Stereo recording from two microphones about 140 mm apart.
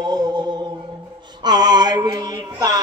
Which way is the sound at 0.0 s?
30° right (ahead or behind).